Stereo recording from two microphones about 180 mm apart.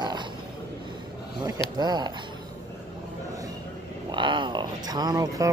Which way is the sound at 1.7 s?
25° right (ahead or behind).